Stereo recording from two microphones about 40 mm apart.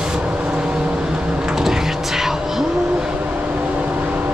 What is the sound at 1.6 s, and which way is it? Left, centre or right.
Vehicle, centre.